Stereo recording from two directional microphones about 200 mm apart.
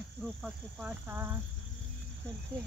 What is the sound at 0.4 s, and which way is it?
Speech, 5° right (ahead or behind).